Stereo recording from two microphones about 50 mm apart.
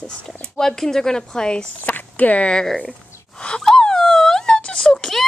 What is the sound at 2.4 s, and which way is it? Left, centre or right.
Speech, centre.